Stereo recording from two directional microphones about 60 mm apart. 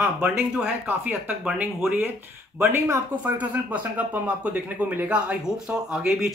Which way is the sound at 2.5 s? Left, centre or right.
Right.